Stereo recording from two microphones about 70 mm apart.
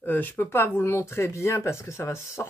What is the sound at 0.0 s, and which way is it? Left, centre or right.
Speech, left.